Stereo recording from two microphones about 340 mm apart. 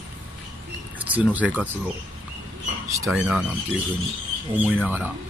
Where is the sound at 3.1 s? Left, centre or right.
Centre.